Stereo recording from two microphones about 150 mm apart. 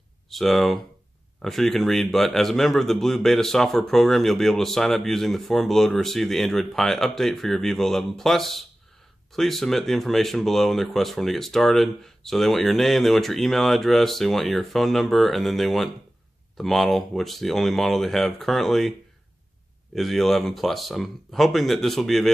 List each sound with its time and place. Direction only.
0.3 s a man's voice: centre (ahead or behind)